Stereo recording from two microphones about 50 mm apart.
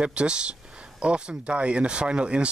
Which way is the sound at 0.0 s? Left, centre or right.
Right.